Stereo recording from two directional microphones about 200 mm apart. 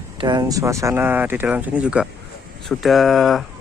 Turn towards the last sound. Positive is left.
turn(degrees=0)  # may be behind; listen again after turning